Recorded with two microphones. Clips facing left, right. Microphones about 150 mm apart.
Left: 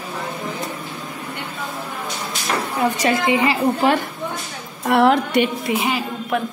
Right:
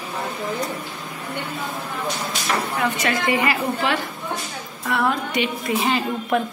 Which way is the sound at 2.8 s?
35° left (ahead or behind).